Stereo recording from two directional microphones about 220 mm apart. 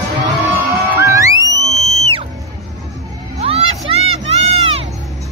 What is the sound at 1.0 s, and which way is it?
Music, 15° right (ahead or behind).